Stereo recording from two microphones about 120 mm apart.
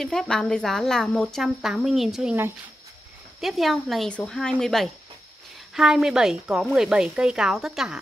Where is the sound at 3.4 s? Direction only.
Centre (ahead or behind).